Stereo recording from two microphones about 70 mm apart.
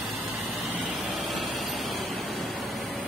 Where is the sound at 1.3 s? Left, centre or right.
Centre.